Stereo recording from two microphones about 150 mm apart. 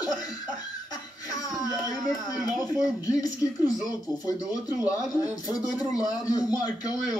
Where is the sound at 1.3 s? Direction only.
25° left (ahead or behind).